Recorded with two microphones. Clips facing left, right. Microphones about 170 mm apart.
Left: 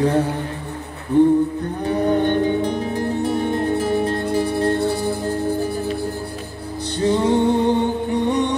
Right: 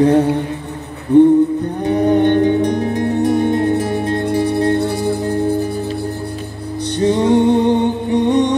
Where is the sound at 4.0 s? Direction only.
20° right (ahead or behind).